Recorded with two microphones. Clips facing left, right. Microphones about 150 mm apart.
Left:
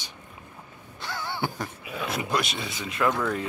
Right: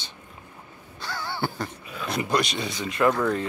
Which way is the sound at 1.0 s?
20° left (ahead or behind).